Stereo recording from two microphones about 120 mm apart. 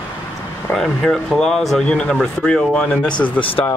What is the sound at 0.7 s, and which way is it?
Speech, 5° left (ahead or behind).